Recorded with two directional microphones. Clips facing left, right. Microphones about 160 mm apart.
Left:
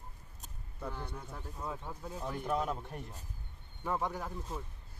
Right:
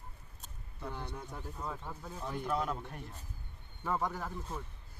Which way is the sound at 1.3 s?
5° left (ahead or behind).